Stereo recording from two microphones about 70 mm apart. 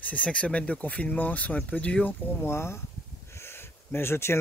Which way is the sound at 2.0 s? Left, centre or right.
Left.